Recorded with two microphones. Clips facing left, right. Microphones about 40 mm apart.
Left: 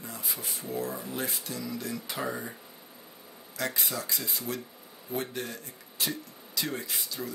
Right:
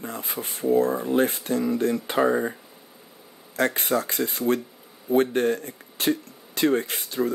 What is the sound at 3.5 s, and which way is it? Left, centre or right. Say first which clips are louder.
Speech: right 10 dB; right.